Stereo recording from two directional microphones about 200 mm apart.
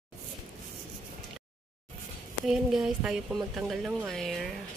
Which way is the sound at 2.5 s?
5° right (ahead or behind).